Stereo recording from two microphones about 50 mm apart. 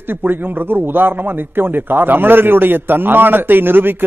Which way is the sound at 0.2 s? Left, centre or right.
Right.